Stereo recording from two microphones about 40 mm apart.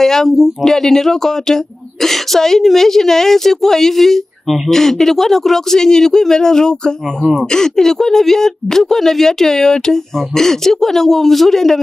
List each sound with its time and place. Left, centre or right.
0.0 s speech: centre